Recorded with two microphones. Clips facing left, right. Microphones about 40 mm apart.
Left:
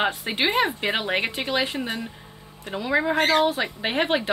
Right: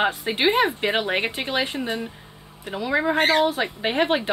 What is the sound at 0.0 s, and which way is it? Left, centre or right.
Speech, centre.